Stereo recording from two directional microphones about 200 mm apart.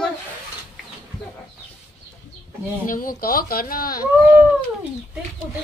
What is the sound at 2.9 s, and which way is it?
Speech, 45° left (ahead or behind).